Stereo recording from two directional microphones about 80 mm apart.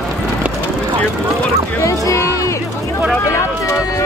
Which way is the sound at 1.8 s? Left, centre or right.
Left.